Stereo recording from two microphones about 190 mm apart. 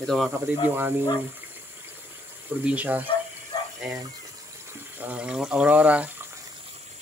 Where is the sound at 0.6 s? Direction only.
10° right (ahead or behind).